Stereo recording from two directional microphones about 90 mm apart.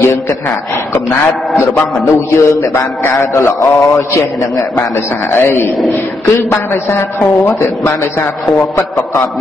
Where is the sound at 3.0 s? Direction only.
25° left (ahead or behind).